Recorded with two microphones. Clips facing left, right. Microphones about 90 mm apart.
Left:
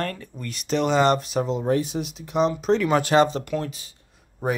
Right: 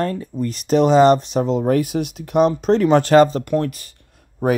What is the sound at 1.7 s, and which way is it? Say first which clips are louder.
Speech: right 5 dB; 65° right (ahead or behind).